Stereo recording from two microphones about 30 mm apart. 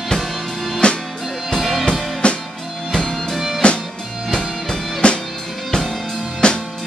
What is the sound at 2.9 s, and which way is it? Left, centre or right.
Music, left.